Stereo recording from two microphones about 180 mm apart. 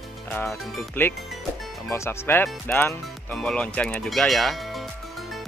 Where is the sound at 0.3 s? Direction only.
10° left (ahead or behind).